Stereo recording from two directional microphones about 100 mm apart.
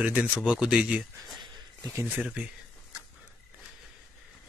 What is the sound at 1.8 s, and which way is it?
Speech, 20° right (ahead or behind).